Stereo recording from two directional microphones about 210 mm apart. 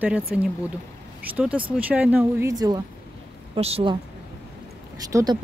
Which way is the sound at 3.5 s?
30° right (ahead or behind).